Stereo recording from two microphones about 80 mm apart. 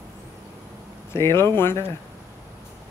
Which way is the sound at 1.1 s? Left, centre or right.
Left.